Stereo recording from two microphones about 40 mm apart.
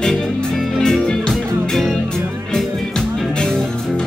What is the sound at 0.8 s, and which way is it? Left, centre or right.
Music, centre.